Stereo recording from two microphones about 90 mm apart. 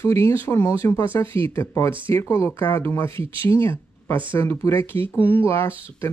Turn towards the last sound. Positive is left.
turn(degrees=30)  # may be behind; listen again after turning